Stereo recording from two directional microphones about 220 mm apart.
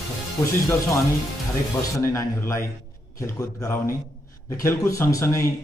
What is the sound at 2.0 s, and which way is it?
A man's voice, 10° left (ahead or behind).